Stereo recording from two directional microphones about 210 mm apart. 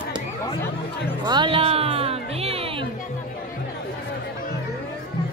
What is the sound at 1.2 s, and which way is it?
Music, 20° right (ahead or behind).